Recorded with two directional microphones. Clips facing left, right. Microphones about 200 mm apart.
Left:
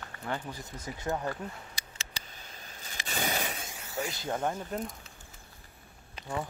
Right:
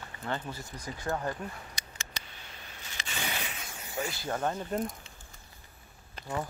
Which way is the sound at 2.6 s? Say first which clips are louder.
Left 2 dB; 40° left (ahead or behind).